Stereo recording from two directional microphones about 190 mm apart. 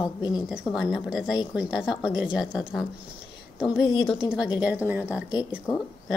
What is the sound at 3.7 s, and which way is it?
Speech, 25° left (ahead or behind).